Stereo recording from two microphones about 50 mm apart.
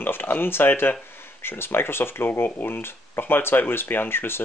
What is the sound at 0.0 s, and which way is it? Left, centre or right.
Speech, left.